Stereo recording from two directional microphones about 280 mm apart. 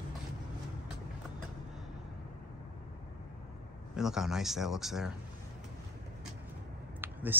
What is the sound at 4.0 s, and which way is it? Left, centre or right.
Speech, centre.